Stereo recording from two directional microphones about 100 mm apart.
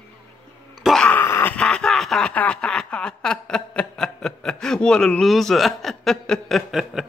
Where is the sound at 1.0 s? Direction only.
15° left (ahead or behind).